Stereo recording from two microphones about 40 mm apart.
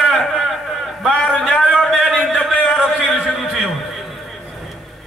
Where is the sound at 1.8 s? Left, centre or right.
Centre.